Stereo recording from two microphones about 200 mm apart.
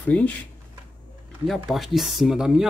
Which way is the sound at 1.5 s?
Centre (ahead or behind).